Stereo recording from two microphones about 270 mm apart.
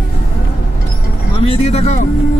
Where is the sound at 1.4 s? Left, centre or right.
Left.